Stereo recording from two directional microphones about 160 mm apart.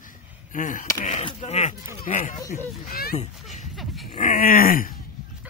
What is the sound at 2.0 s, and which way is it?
Groan, 55° left (ahead or behind).